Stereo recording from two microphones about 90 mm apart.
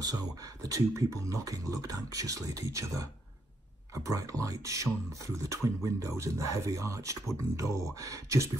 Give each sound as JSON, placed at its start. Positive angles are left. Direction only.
{"t": 0.0, "sound": "speech", "side_deg": -45}